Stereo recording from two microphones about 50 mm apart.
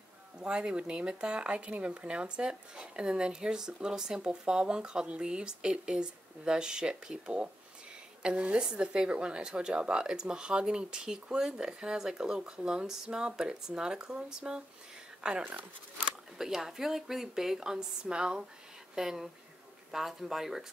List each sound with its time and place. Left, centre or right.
0.4 s speech: centre